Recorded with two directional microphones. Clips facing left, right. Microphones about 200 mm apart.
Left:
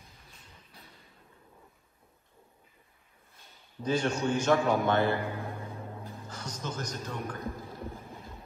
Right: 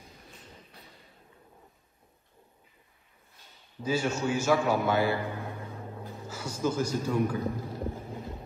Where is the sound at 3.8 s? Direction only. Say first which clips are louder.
Even; 5° right (ahead or behind).